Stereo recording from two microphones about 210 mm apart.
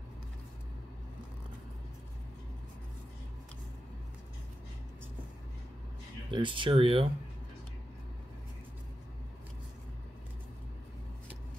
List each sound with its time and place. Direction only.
6.3 s speech: 25° right (ahead or behind)